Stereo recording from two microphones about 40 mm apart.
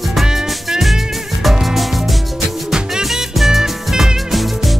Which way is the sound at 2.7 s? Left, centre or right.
Centre.